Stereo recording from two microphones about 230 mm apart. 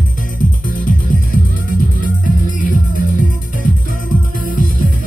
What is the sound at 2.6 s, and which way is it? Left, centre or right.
Music, left.